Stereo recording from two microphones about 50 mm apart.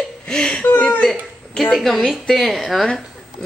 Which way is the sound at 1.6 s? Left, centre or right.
Centre.